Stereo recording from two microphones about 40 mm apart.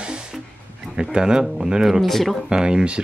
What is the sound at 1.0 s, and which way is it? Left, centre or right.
Speech, right.